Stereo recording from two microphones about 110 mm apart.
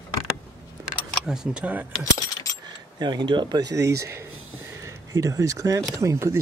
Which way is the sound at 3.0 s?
45° right (ahead or behind).